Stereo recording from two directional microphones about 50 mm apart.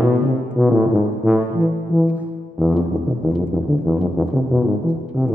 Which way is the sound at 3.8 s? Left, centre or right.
Centre.